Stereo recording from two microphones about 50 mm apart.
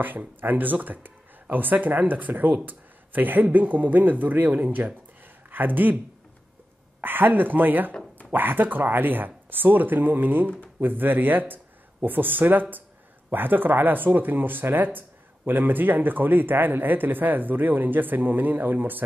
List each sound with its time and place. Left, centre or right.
0.0 s speech: right
7.0 s speech: right